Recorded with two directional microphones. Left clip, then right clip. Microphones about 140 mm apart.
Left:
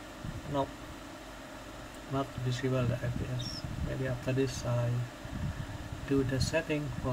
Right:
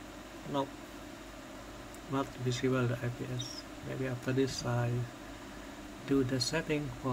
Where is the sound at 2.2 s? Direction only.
30° right (ahead or behind).